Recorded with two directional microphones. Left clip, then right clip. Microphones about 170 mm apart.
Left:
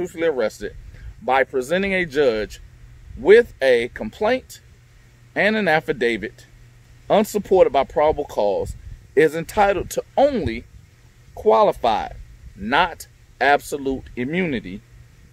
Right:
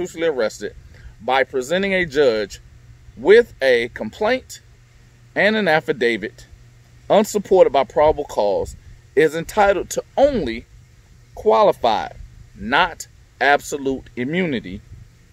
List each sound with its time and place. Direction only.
0.0 s speech: 5° right (ahead or behind)